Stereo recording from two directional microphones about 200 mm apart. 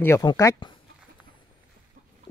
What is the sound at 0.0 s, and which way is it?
Speech, 15° left (ahead or behind).